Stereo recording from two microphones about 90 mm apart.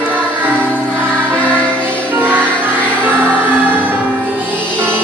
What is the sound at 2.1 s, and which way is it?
Music, 20° right (ahead or behind).